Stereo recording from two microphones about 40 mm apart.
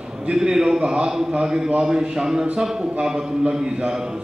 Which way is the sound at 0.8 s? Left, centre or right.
Right.